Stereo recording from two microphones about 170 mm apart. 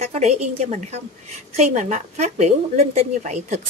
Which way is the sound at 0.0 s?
40° right (ahead or behind).